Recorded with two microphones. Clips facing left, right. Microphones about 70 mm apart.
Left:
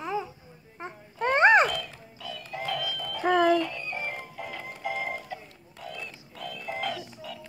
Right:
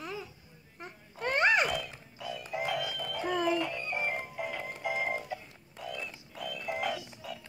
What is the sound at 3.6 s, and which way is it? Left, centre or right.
Music, centre.